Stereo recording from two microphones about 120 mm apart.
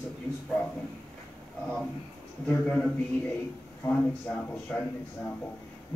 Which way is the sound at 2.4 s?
5° left (ahead or behind).